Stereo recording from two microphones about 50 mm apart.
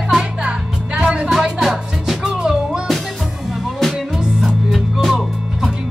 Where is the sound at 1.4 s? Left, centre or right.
Centre.